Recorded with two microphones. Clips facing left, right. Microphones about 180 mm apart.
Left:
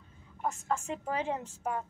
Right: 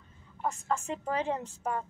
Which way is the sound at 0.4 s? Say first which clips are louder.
Right 1 dB; 10° left (ahead or behind).